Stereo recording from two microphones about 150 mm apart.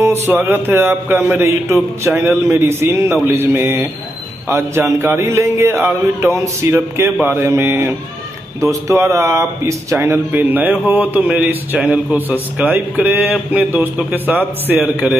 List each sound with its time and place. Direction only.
0.0 s speech: 15° right (ahead or behind)